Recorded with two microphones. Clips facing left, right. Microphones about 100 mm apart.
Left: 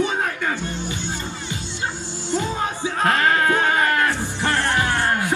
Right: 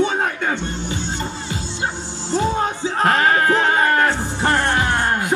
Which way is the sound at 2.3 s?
30° right (ahead or behind).